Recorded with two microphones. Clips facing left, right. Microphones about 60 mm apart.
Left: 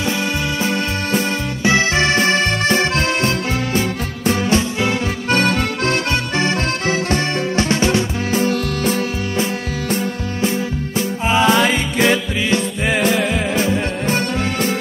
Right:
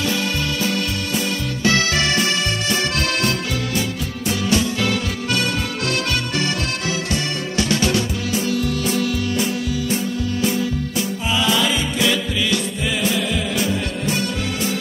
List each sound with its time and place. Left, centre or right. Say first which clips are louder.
0.0 s music: left 2 dB; left
5.3 s accordion: left 6 dB; left
6.3 s music: left 4 dB; left
8.4 s music: left 2 dB; left